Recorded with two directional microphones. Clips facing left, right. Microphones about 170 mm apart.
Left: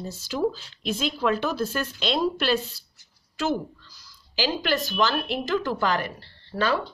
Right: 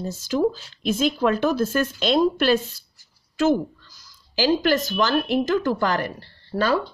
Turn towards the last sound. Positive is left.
turn(degrees=-45)  # may be behind; listen again after turning